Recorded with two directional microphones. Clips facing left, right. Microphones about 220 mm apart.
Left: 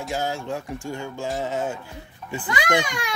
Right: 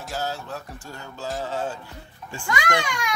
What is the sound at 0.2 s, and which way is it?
Speech, 15° left (ahead or behind).